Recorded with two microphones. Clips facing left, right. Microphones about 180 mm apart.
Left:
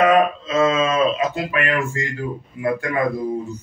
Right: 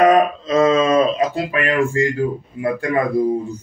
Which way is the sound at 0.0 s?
35° right (ahead or behind).